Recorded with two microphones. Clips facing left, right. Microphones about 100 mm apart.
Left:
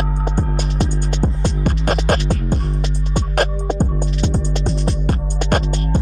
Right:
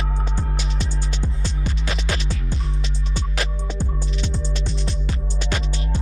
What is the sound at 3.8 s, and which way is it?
Music, 45° left (ahead or behind).